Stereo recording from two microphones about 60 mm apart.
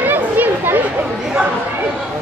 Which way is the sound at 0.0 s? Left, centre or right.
Right.